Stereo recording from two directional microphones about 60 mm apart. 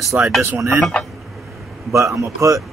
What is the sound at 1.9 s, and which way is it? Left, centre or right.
Speech, right.